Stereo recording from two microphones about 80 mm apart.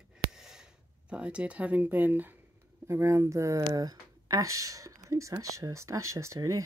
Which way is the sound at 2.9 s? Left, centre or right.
Right.